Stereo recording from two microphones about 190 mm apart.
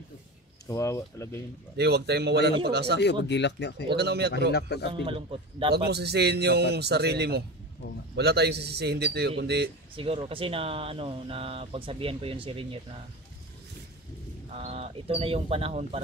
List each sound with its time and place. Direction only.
0.7 s speech: 15° left (ahead or behind)
1.8 s a man's voice: 60° right (ahead or behind)
3.3 s speech: 65° left (ahead or behind)
3.9 s a man's voice: 60° right (ahead or behind)
4.5 s speech: 60° left (ahead or behind)
5.0 s speech: 30° right (ahead or behind)
5.9 s a man's voice: 60° right (ahead or behind)
9.9 s speech: 30° right (ahead or behind)
14.5 s speech: 30° right (ahead or behind)